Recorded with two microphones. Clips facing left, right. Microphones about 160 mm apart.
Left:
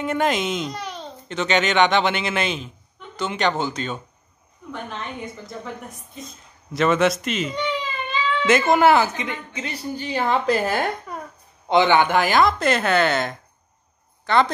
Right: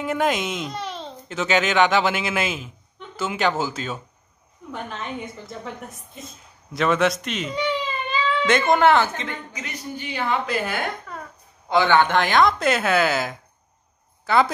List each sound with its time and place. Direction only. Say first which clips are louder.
0.0 s speech: left 1 dB; centre (ahead or behind)
9.5 s a woman's voice: left 4 dB; 30° left (ahead or behind)
11.7 s speech: left 1 dB; 15° left (ahead or behind); by 14.5 s 5° right (ahead or behind)